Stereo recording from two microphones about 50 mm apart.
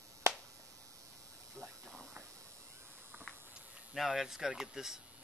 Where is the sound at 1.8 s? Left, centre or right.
Centre.